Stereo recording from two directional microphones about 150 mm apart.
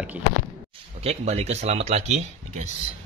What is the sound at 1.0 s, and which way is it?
Speech, 45° right (ahead or behind).